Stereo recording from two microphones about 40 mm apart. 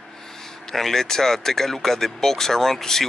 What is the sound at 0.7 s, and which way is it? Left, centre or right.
Speech, centre.